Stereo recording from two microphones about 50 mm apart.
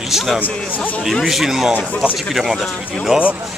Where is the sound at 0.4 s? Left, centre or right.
Left.